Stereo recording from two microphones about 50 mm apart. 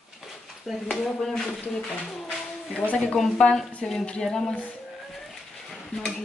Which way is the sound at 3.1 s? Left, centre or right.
Centre.